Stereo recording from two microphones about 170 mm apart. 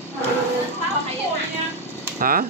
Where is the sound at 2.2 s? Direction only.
55° right (ahead or behind).